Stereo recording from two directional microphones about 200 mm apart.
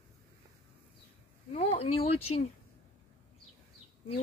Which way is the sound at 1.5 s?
30° left (ahead or behind).